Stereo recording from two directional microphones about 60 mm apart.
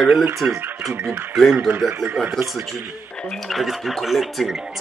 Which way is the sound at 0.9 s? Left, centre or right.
Centre.